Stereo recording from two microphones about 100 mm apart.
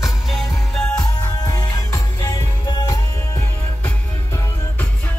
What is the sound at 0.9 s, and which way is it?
Music, 45° left (ahead or behind).